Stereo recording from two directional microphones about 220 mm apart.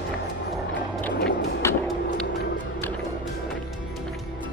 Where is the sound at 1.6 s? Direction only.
10° left (ahead or behind).